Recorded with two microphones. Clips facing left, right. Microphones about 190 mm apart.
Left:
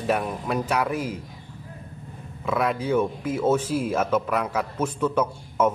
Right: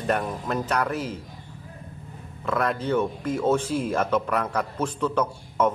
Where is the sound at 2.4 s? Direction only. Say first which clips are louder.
Left 1 dB; 5° left (ahead or behind).